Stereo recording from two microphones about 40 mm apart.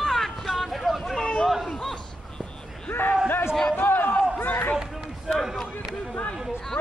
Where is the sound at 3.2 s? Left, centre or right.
Left.